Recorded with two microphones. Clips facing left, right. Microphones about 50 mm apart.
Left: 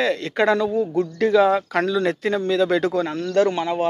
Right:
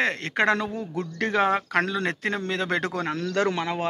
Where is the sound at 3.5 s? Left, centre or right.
Right.